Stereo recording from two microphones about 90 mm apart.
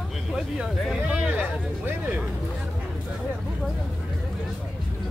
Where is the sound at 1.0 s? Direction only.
15° right (ahead or behind).